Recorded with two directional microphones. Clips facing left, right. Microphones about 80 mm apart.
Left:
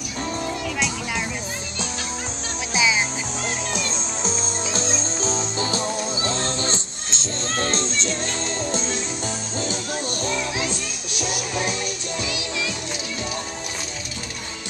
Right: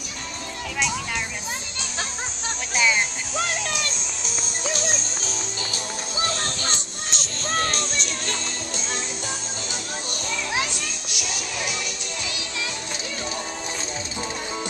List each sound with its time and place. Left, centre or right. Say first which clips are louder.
2.7 s music: left 1 dB; centre
3.4 s music: left 1 dB; left
11.1 s music: left 4 dB; left